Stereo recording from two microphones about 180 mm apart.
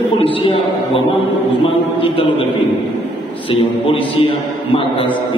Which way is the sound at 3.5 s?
30° left (ahead or behind).